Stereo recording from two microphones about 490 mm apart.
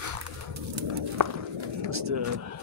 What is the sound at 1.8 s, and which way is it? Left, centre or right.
Speech, right.